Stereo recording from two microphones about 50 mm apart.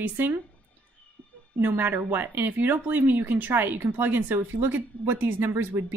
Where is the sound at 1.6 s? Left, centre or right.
Right.